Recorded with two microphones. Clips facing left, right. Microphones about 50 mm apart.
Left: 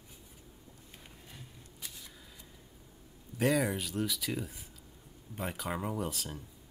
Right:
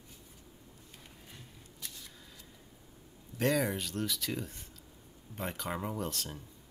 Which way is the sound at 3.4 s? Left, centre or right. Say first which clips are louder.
Left 1 dB; centre.